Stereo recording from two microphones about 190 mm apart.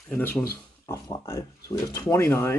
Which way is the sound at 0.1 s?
10° left (ahead or behind).